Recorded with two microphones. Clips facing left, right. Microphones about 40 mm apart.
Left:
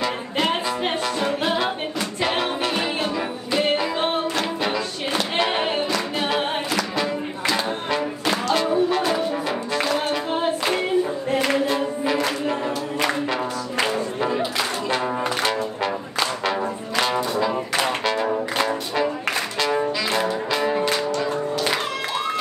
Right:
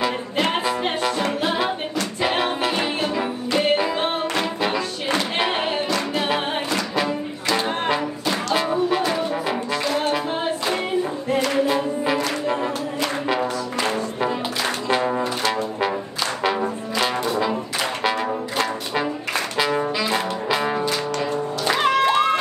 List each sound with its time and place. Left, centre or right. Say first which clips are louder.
0.0 s music: right 1 dB; centre
2.2 s music: right 1 dB; centre
6.2 s music: even; centre
8.5 s music: right 1 dB; centre
11.6 s music: right 1 dB; centre
14.9 s brass instrument: right 6 dB; centre
19.6 s music: even; centre
21.8 s music: right 8 dB; right